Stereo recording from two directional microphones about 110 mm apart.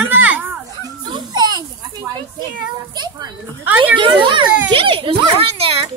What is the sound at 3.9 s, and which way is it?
Speech, 50° right (ahead or behind).